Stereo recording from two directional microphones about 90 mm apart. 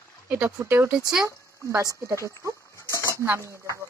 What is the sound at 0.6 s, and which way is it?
Speech, 25° right (ahead or behind).